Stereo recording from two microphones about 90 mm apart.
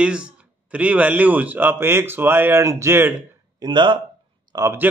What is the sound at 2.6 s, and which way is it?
Speech, 35° right (ahead or behind).